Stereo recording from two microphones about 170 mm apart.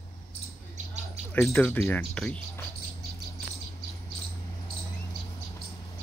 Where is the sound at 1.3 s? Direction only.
5° left (ahead or behind).